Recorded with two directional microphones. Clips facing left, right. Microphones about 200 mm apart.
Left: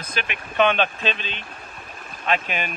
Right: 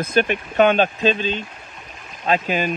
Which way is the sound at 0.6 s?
40° right (ahead or behind).